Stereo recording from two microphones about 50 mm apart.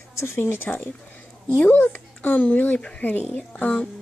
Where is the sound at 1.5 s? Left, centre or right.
Left.